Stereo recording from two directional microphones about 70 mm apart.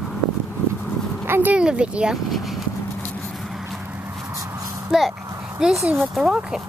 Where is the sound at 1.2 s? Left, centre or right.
Right.